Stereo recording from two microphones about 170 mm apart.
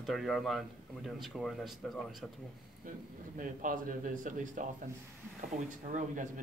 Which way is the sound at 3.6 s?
55° right (ahead or behind).